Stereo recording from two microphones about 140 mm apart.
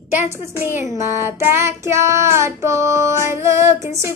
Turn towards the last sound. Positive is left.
turn(degrees=-20)  # may be behind; listen again after turning